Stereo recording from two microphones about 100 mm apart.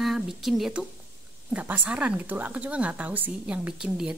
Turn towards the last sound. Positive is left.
turn(degrees=-5)  # may be behind; listen again after turning